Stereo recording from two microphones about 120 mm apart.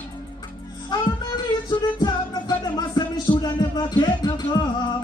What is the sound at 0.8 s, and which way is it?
Music, 35° left (ahead or behind).